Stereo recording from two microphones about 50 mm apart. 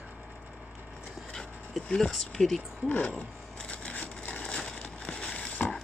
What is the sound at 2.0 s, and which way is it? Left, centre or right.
Speech, centre.